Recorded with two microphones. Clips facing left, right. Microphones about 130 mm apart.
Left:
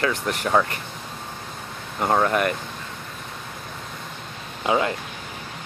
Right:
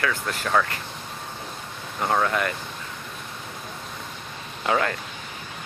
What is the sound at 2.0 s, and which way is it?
Speech, 15° left (ahead or behind).